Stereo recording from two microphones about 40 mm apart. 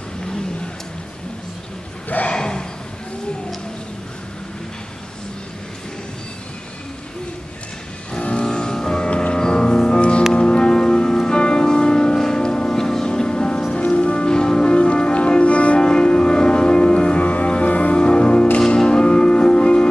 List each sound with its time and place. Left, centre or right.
2.2 s a sound: centre
8.1 s music: left
15.8 s music: left